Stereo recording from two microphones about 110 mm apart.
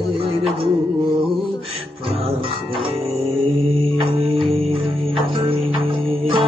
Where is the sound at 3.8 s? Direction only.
60° right (ahead or behind).